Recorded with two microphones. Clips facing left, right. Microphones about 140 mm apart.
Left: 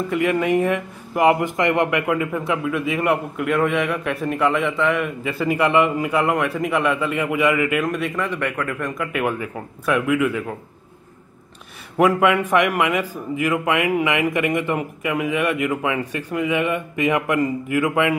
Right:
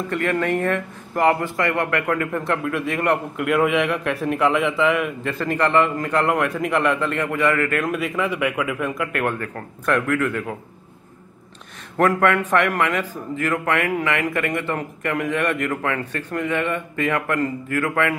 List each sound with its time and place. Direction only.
0.1 s speech: 10° left (ahead or behind)
7.8 s speech: centre (ahead or behind)
12.0 s a man's voice: 10° left (ahead or behind)